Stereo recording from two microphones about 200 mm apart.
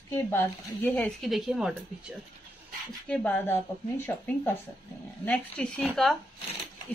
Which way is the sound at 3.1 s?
10° left (ahead or behind).